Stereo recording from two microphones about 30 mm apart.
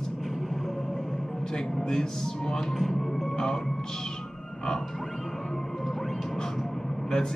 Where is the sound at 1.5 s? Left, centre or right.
Left.